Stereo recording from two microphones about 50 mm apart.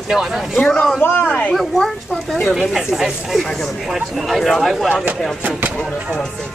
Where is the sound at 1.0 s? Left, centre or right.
Left.